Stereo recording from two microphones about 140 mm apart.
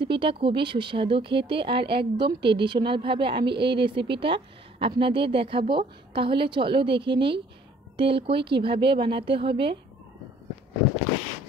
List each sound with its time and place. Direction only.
0.0 s speech: 40° right (ahead or behind)